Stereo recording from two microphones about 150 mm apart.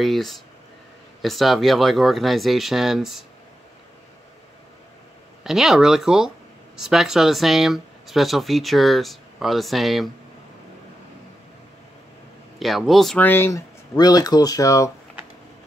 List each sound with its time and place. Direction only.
0.0 s speech: centre (ahead or behind)
5.4 s speech: 5° right (ahead or behind)
12.5 s speech: centre (ahead or behind); by 14.9 s 20° left (ahead or behind)